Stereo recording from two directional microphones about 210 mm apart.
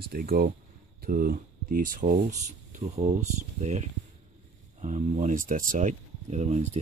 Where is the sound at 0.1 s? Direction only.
45° right (ahead or behind).